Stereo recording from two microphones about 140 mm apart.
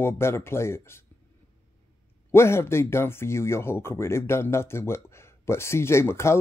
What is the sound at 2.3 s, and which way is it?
Speech, 20° left (ahead or behind).